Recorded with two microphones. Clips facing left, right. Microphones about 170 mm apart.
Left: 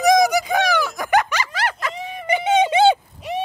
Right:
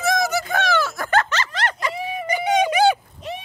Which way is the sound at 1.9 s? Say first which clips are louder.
Right 2 dB; 10° right (ahead or behind).